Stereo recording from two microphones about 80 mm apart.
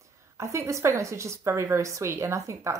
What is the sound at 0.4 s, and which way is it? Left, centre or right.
A woman's voice, right.